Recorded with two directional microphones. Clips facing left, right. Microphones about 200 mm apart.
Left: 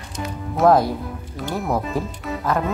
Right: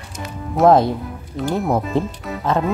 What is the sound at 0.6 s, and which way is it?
Speech, centre (ahead or behind).